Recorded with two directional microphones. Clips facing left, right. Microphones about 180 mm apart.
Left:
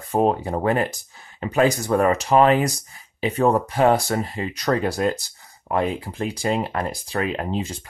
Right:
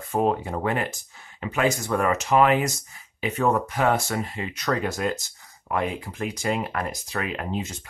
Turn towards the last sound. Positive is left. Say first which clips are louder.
# left 4 dB
turn(degrees=30)  # may be behind; listen again after turning